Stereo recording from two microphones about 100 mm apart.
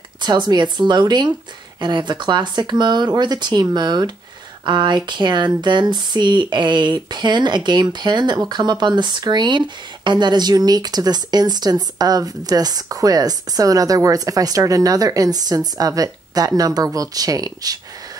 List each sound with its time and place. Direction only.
0.2 s speech: 45° right (ahead or behind)